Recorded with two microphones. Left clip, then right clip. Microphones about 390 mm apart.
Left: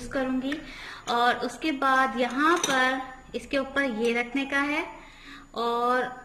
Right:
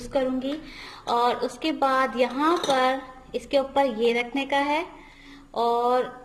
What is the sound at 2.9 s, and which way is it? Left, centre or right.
A woman's voice, centre.